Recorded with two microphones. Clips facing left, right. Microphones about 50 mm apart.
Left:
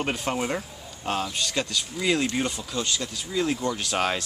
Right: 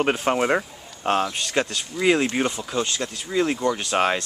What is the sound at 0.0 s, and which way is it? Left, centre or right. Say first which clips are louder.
Speech: right 6 dB; right.